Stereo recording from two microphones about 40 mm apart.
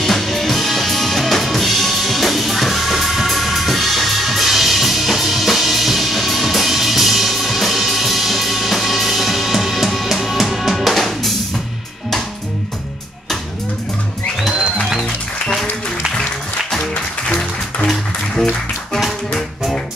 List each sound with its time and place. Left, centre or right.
0.0 s drum: centre
17.3 s music: centre
18.9 s music: centre